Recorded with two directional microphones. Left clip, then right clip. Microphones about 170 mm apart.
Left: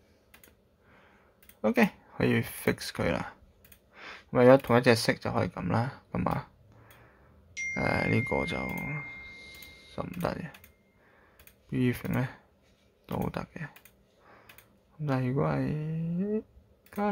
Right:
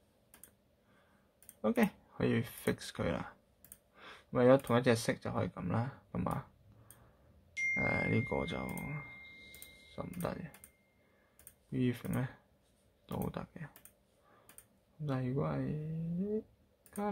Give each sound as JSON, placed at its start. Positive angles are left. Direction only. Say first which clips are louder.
{"t": 1.6, "sound": "speech", "louder": "left 7 dB", "side_deg": 20}
{"t": 7.7, "sound": "speech", "louder": "left 6 dB", "side_deg": 20}
{"t": 11.7, "sound": "speech", "louder": "left 6 dB", "side_deg": 20}
{"t": 15.0, "sound": "speech", "louder": "left 8 dB", "side_deg": 25}